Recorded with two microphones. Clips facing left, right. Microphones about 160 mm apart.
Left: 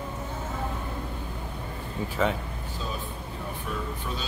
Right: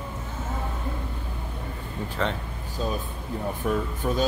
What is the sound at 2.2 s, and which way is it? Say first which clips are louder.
Speech: left 2 dB; 5° left (ahead or behind).